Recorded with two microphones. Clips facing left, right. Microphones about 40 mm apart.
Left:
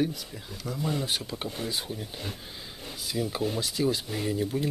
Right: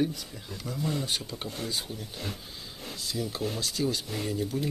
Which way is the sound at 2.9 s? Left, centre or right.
Centre.